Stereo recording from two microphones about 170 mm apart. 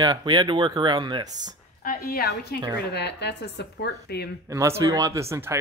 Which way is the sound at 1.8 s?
60° left (ahead or behind).